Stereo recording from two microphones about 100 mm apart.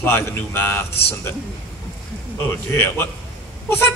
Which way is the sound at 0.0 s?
25° left (ahead or behind).